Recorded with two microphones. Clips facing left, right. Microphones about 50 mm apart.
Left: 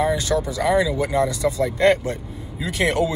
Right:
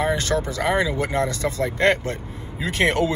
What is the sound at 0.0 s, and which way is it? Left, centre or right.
Speech, right.